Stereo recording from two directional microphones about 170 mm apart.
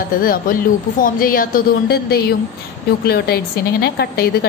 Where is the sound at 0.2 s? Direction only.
55° left (ahead or behind).